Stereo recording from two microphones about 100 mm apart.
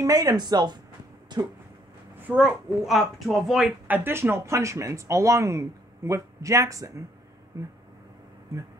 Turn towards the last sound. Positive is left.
turn(degrees=-35)  # may be behind; listen again after turning